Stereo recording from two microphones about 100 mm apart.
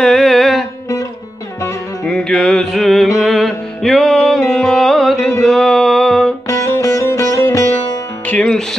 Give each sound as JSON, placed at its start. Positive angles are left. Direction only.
{"t": 0.0, "sound": "music", "side_deg": 5}
{"t": 2.0, "sound": "music", "side_deg": 5}
{"t": 5.4, "sound": "a sound", "side_deg": 5}
{"t": 6.4, "sound": "music", "side_deg": 35}